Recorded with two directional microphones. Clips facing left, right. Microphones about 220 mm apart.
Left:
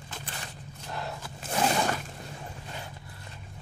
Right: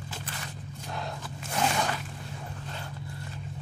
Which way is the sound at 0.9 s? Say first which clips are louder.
Even; 5° left (ahead or behind).